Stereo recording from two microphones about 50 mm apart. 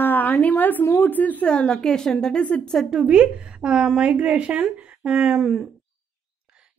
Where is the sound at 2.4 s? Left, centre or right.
Left.